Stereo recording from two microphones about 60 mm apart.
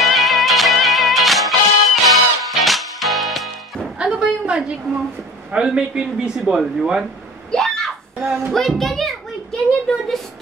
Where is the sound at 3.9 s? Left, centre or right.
Centre.